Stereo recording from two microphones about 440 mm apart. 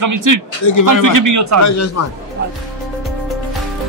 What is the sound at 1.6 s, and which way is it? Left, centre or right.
Speech, left.